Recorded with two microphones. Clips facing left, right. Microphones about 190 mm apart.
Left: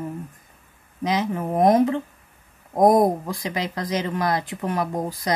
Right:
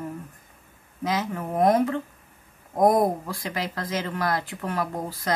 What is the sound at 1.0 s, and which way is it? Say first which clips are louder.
Speech: left 4 dB; 20° left (ahead or behind).